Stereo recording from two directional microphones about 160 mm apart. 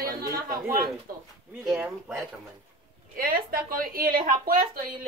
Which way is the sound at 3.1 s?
65° right (ahead or behind).